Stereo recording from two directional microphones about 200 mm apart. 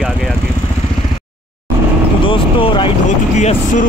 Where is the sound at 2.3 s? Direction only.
25° left (ahead or behind).